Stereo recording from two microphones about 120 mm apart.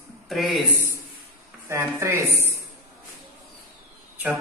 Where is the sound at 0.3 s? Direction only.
Centre (ahead or behind).